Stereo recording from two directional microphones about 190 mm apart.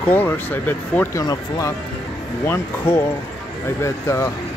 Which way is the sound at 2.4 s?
15° left (ahead or behind).